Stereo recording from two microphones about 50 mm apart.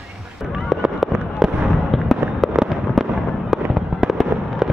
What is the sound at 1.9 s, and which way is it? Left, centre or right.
Fireworks, centre.